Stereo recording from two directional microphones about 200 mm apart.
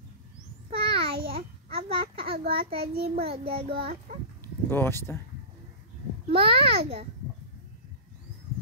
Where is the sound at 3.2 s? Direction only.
30° right (ahead or behind).